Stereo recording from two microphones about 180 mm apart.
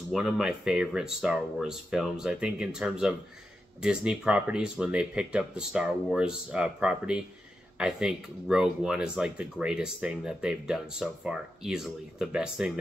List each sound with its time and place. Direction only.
0.1 s speech: 5° right (ahead or behind)